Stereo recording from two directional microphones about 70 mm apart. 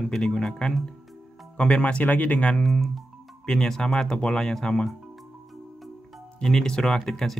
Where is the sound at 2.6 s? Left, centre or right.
Centre.